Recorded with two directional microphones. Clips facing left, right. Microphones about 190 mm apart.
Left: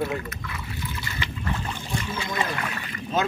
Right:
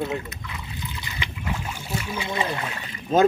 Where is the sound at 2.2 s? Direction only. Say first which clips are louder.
Right 1 dB; 25° right (ahead or behind).